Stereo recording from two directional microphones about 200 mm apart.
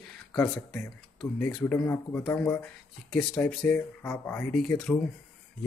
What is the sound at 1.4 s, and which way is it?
Speech, 5° left (ahead or behind).